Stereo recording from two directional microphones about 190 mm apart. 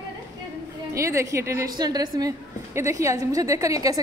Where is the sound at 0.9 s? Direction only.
15° right (ahead or behind).